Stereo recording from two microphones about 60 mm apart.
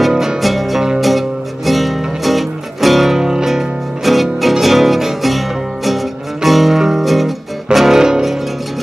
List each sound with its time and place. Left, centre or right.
0.1 s music: centre
0.4 s music: centre